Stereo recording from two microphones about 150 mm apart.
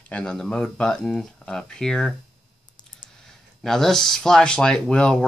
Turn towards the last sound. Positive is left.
turn(degrees=5)  # may be behind; listen again after turning